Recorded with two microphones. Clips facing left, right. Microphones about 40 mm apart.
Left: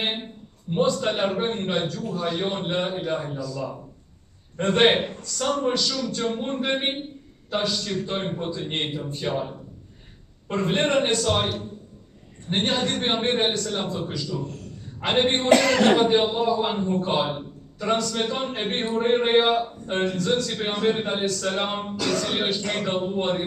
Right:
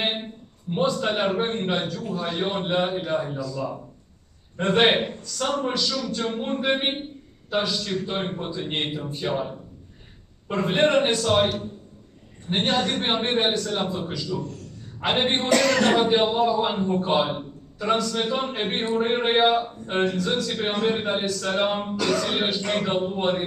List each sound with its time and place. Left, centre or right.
0.0 s a man's voice: centre
15.4 s speech: left
15.9 s a man's voice: centre